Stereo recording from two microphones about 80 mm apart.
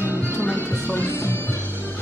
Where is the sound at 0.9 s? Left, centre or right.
Left.